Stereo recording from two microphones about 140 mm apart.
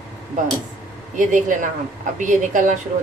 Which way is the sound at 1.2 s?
65° right (ahead or behind).